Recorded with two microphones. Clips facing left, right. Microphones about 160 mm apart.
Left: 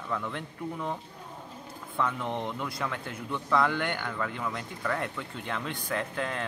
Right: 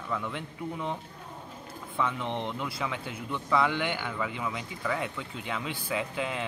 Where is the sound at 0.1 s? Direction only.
Centre (ahead or behind).